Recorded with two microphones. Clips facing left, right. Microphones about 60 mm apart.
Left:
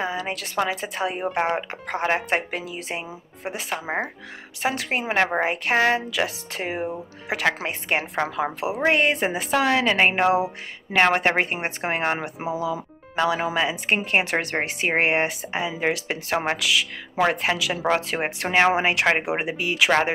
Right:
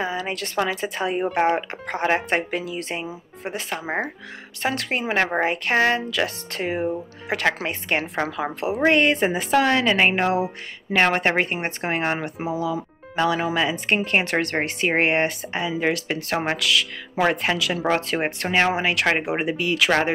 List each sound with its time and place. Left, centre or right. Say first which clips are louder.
0.0 s a woman's voice: right 1 dB; centre